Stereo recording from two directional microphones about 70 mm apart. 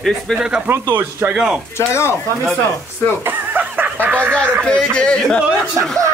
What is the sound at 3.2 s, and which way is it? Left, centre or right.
Snicker, right.